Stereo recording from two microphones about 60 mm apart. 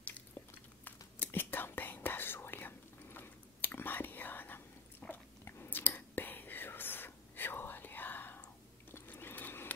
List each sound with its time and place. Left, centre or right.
0.8 s whispering: left
5.0 s biting: centre
5.4 s whispering: left
8.9 s a sound: left